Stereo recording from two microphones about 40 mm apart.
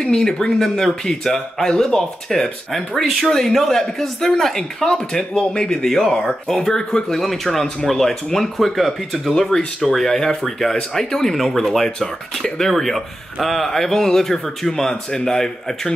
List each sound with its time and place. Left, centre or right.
0.0 s speech: centre
5.9 s speech: centre
7.2 s speech: centre
9.3 s speech: centre